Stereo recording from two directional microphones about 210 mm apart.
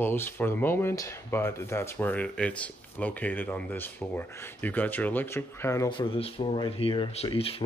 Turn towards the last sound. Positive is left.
turn(degrees=25)  # may be behind; listen again after turning